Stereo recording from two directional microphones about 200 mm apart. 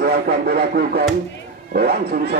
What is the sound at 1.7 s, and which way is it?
Speech, 50° right (ahead or behind).